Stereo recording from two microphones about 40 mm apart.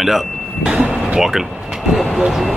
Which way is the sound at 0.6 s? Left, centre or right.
Right.